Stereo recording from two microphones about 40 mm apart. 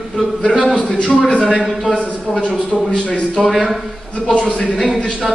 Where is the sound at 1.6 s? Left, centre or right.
Centre.